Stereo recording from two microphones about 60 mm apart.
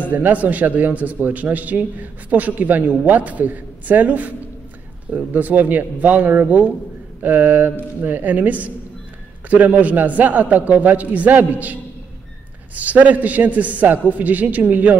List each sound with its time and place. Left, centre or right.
0.1 s a man's voice: right